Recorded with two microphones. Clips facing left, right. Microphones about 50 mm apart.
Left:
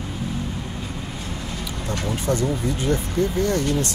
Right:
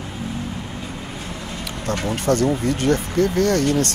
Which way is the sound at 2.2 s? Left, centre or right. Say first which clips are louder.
Right 5 dB; right.